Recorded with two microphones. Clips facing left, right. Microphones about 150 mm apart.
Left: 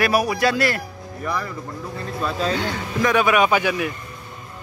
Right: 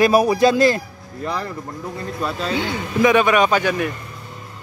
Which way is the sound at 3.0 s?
Centre (ahead or behind).